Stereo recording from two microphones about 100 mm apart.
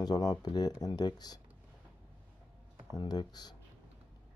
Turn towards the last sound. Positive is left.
turn(degrees=45)  # may be behind; listen again after turning